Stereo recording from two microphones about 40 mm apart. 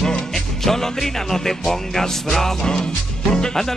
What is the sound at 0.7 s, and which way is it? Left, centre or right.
Speech, centre.